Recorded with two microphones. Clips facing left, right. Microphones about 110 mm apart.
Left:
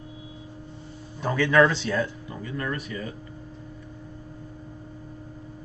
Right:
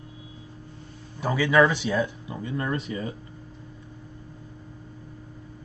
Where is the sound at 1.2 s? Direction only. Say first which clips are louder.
Even; 10° right (ahead or behind); by 3.2 s 25° right (ahead or behind).